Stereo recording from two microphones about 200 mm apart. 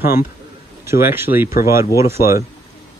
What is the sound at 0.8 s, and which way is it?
A man's voice, 10° right (ahead or behind).